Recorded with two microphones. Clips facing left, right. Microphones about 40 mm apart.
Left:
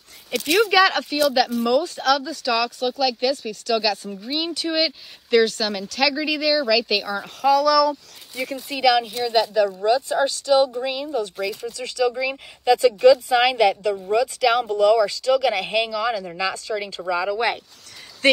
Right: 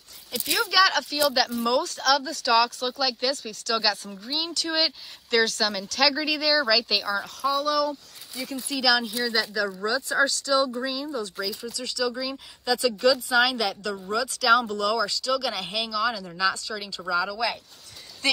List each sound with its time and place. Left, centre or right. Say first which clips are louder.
0.3 s speech: left 8 dB; left
0.7 s speech: left 1 dB; left
1.1 s speech: left 4 dB; centre
1.8 s speech: left 3 dB; centre
8.6 s speech: left 5 dB; left
9.0 s speech: left 3 dB; centre
9.8 s speech: left 4 dB; left